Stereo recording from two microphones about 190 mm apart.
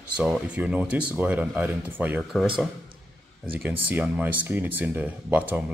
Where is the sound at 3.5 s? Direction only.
10° right (ahead or behind).